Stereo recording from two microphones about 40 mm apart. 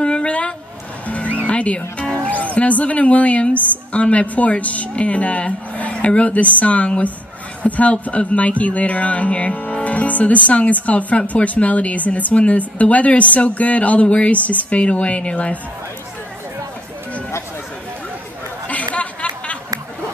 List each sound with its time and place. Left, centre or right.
0.0 s a sound: left
1.0 s music: left
2.8 s speech: left
18.7 s chatter: left